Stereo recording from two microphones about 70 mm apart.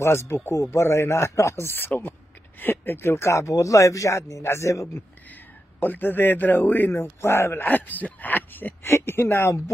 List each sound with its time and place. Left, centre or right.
0.3 s speech: left
5.8 s a man's voice: left
7.6 s a man's voice: left
8.8 s speech: left